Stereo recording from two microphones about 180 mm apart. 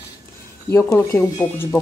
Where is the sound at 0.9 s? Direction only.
10° left (ahead or behind).